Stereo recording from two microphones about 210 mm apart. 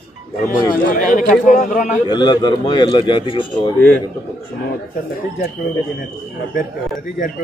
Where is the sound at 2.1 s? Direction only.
20° left (ahead or behind).